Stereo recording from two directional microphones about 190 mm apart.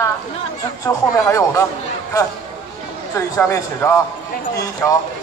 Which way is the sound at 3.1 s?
15° left (ahead or behind).